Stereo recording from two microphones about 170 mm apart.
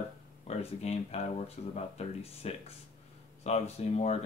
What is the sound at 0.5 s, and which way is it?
Speech, 40° left (ahead or behind).